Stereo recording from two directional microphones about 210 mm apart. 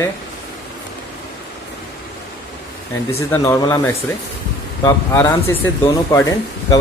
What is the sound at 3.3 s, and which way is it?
Speech, 15° left (ahead or behind).